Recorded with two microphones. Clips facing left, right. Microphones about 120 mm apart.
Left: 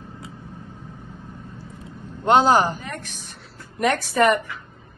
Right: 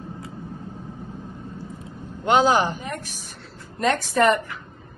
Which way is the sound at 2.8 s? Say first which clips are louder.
Right 2 dB; 40° right (ahead or behind).